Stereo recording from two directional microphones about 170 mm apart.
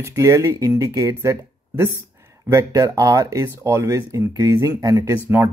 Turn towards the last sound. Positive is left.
turn(degrees=-15)  # may be behind; listen again after turning